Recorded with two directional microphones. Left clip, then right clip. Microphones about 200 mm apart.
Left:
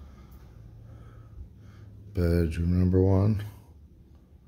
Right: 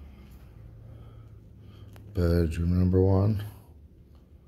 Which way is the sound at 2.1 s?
20° left (ahead or behind).